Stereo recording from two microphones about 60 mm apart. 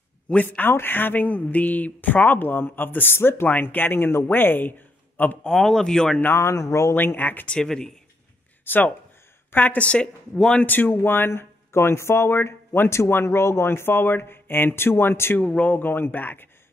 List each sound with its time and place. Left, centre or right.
0.3 s a woman's voice: left
0.7 s speech: left
5.4 s a man's voice: centre
6.3 s speech: left
7.0 s speech: left
7.4 s a man's voice: centre
8.6 s a woman's voice: left; by 10.6 s centre
10.6 s speech: left
15.3 s speech: left